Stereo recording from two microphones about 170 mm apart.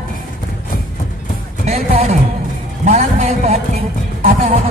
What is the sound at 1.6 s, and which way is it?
A man's voice, 40° right (ahead or behind).